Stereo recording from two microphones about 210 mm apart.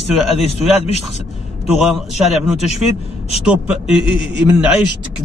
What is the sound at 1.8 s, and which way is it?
A man's voice, centre (ahead or behind).